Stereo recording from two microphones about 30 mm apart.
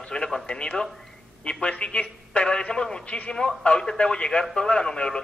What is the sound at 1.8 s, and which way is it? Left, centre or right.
Speech, left.